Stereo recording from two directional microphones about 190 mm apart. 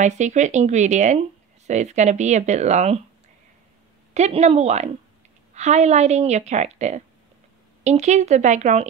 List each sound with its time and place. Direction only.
0.0 s a woman's voice: 40° right (ahead or behind)
4.1 s a woman's voice: 35° right (ahead or behind)